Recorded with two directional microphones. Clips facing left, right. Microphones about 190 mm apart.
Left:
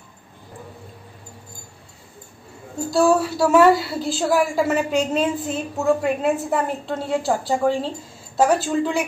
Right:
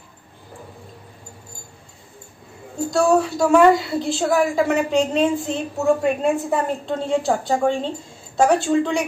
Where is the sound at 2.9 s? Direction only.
5° left (ahead or behind).